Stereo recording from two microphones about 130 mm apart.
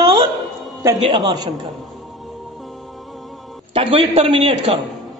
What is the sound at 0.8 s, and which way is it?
Speech, 30° right (ahead or behind).